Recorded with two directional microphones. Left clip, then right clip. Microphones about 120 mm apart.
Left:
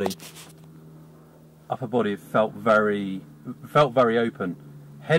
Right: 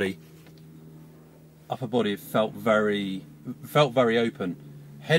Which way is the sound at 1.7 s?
20° right (ahead or behind).